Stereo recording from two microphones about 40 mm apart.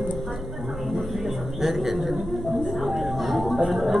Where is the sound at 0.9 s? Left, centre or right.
Centre.